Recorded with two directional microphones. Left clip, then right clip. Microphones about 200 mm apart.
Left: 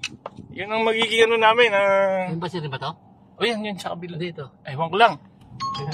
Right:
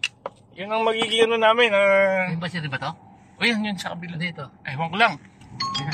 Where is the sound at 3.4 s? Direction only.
40° left (ahead or behind).